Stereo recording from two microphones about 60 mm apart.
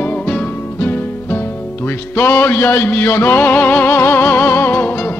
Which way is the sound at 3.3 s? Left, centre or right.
Left.